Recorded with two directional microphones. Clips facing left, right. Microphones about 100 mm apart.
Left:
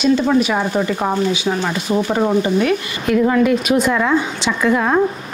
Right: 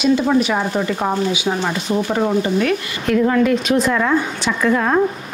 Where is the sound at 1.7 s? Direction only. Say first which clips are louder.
Left 1 dB; 10° left (ahead or behind).